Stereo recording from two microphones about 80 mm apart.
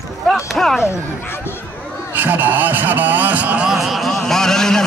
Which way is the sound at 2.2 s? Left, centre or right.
Right.